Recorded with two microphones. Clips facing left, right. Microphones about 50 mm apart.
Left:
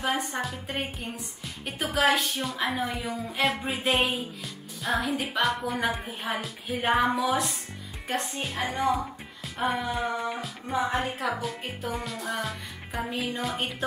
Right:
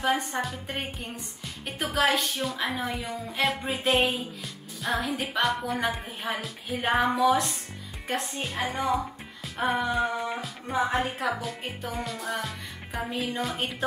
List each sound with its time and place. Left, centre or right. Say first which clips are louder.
0.0 s speech: right 2 dB; centre